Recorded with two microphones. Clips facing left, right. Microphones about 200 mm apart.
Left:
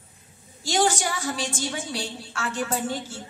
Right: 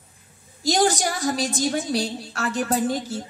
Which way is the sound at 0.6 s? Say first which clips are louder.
Right 3 dB; 40° right (ahead or behind).